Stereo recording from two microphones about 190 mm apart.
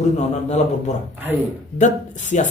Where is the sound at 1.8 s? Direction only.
40° left (ahead or behind).